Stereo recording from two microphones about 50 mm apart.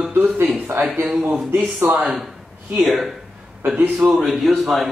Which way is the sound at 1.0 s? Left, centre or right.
Right.